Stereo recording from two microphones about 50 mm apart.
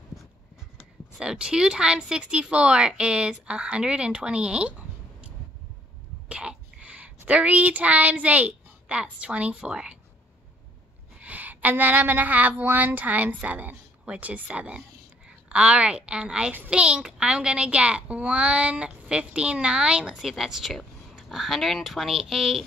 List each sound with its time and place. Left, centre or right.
1.1 s speech: centre
6.2 s a woman's voice: right
11.1 s a woman's voice: right
20.2 s speech: centre